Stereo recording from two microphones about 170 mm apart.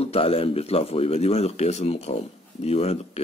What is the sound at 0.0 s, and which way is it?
Speech, 35° left (ahead or behind).